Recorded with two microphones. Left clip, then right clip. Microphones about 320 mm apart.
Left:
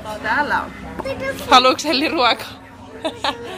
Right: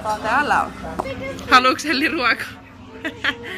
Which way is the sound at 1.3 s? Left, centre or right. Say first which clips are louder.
Left 2 dB; centre.